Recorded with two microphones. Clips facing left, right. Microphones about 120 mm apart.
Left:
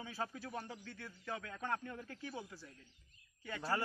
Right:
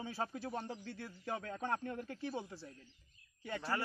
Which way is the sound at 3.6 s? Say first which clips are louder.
Left 1 dB; 15° left (ahead or behind).